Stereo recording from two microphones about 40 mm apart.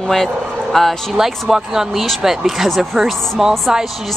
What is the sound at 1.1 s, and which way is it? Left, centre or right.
Speech, centre.